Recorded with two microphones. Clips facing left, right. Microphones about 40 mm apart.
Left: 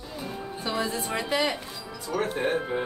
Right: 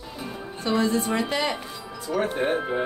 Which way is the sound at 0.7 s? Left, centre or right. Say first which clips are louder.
Right 6 dB; centre.